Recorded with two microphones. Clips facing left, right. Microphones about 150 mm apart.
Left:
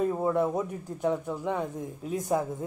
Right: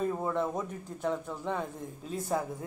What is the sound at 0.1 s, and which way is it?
Speech, 10° left (ahead or behind).